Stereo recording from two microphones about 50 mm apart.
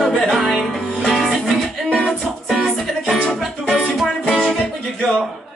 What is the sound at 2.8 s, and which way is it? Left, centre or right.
Music, centre.